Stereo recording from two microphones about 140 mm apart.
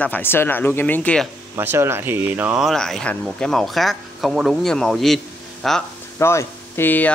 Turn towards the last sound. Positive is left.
turn(degrees=10)  # may be behind; listen again after turning